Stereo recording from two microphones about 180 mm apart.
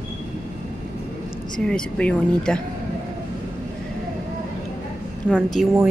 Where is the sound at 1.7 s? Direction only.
5° left (ahead or behind).